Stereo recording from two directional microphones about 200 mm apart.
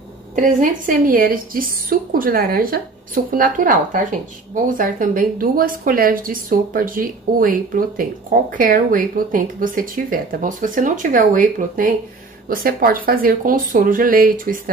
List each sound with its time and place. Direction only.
0.4 s a woman's voice: 40° right (ahead or behind)